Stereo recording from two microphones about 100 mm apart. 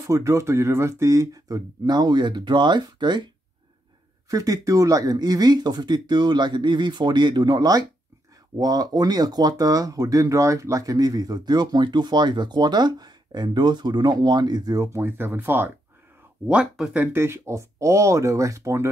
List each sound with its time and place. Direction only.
0.0 s speech: 30° right (ahead or behind); by 3.3 s 45° right (ahead or behind)
4.3 s speech: 35° right (ahead or behind); by 15.7 s 20° right (ahead or behind)
16.4 s speech: 5° right (ahead or behind)
17.0 s speech: 25° right (ahead or behind)